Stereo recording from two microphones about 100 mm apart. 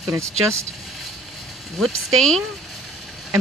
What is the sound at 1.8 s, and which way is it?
Speech, 5° left (ahead or behind).